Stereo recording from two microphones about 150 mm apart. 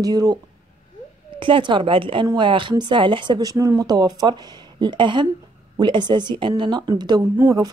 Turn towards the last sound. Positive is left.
turn(degrees=-15)  # may be behind; listen again after turning